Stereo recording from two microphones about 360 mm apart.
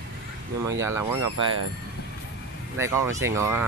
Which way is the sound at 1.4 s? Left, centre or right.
Right.